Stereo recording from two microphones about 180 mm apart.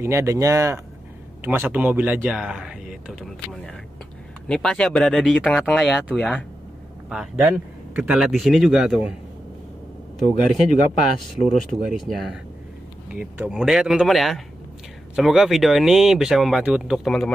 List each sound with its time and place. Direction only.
0.0 s speech: 15° right (ahead or behind)
11.1 s speech: centre (ahead or behind)